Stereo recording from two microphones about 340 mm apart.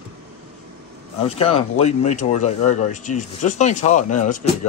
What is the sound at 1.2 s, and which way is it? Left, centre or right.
Speech, centre.